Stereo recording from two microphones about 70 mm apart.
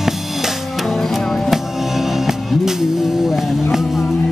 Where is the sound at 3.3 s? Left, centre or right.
Centre.